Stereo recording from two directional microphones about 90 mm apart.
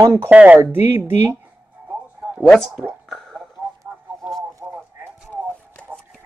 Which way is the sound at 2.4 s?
5° left (ahead or behind).